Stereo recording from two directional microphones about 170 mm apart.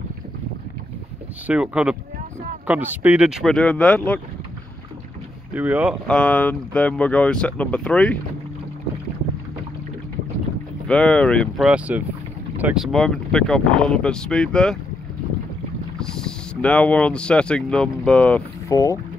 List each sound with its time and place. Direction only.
1.5 s speech: 5° right (ahead or behind)
5.5 s speech: 10° right (ahead or behind)
6.0 s speech: 5° left (ahead or behind)
10.9 s speech: 5° left (ahead or behind)
16.0 s speech: 5° left (ahead or behind)
18.7 s speech: 20° left (ahead or behind)